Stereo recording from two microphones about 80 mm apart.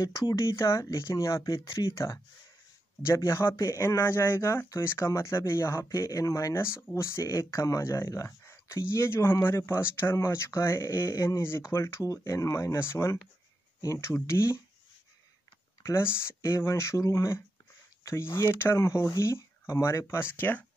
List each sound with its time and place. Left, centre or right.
0.0 s speech: left
0.4 s speech: left
3.5 s speech: left
3.8 s speech: left
15.8 s speech: left